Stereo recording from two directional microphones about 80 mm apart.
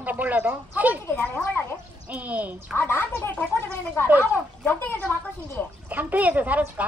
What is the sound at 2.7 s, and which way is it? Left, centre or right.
Speech, left.